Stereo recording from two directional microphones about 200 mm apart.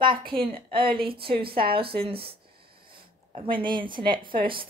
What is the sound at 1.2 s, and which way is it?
Speech, 50° right (ahead or behind).